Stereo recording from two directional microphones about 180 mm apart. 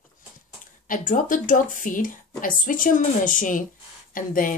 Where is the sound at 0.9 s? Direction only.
50° left (ahead or behind).